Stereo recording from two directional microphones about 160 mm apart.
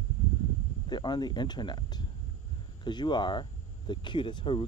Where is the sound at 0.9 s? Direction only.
25° left (ahead or behind).